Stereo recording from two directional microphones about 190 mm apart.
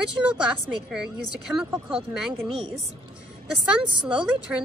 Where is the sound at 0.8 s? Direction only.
5° right (ahead or behind).